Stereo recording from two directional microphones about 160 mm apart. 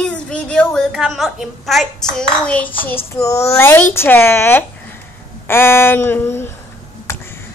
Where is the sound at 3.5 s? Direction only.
15° left (ahead or behind).